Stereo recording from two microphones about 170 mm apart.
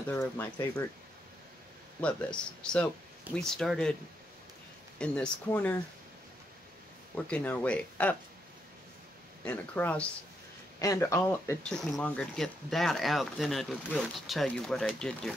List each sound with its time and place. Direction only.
0.1 s speech: 15° left (ahead or behind)
2.0 s speech: 5° left (ahead or behind)
4.9 s speech: 5° left (ahead or behind)
7.2 s speech: 5° left (ahead or behind)
9.4 s speech: 10° left (ahead or behind)
11.7 s speech: 5° left (ahead or behind)